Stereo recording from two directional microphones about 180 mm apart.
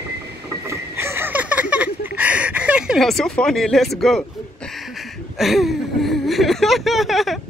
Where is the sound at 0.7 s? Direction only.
15° right (ahead or behind).